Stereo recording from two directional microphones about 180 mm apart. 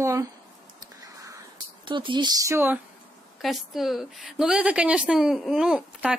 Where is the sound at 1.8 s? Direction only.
25° right (ahead or behind).